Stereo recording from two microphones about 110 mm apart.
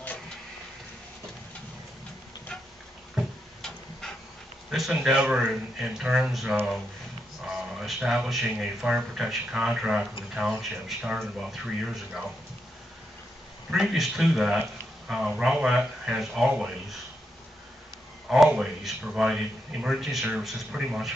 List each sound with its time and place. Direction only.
3.2 s tick-tock: 5° left (ahead or behind)
4.6 s speech: centre (ahead or behind)
13.7 s speech: 5° right (ahead or behind)
18.3 s speech: 5° right (ahead or behind)